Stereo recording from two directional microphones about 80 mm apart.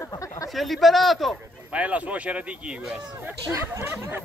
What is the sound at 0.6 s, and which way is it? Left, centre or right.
Speech, centre.